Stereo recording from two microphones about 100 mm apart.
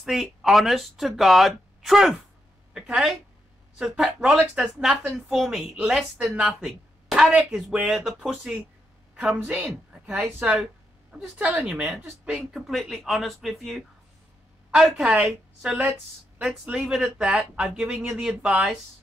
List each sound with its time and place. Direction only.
0.0 s speech: centre (ahead or behind)
7.7 s a woman's voice: 15° right (ahead or behind)
10.6 s a sound: 5° right (ahead or behind)
11.6 s speech: 10° right (ahead or behind)